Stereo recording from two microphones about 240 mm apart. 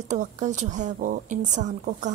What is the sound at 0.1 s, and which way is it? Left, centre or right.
A woman's voice, right.